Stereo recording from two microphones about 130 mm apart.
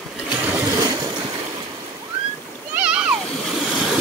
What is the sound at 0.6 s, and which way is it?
Boat, 30° right (ahead or behind).